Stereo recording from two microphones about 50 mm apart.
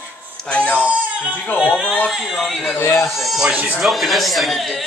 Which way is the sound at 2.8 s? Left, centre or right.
Left.